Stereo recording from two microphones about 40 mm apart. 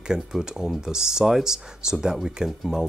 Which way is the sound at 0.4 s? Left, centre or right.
Centre.